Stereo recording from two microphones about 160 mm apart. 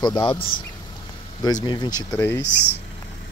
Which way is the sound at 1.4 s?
25° left (ahead or behind).